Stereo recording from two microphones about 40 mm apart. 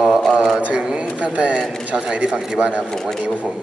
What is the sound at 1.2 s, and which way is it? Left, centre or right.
A man's voice, right.